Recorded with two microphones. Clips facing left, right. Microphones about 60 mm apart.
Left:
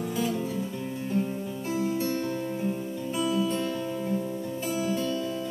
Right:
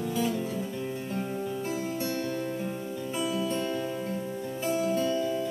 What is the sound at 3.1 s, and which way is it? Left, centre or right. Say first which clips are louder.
Music: left 4 dB; centre.